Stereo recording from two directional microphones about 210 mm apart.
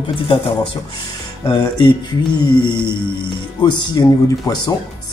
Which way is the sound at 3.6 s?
20° left (ahead or behind).